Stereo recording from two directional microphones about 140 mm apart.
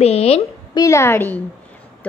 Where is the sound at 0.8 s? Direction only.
20° left (ahead or behind).